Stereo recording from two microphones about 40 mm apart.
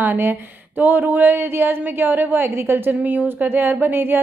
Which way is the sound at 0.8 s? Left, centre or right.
Right.